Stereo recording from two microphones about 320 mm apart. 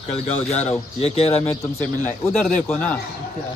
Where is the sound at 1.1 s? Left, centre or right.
Centre.